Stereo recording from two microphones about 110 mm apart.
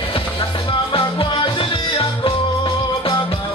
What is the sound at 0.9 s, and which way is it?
Music, 50° left (ahead or behind).